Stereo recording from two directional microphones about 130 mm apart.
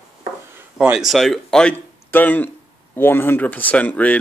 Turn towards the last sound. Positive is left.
turn(degrees=10)  # may be behind; listen again after turning